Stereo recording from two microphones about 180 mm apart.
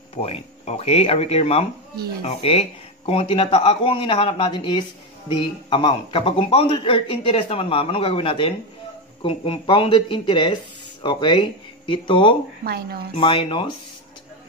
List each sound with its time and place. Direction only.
0.1 s a man's voice: 35° left (ahead or behind)
12.6 s speech: 60° right (ahead or behind)
13.1 s speech: 30° left (ahead or behind)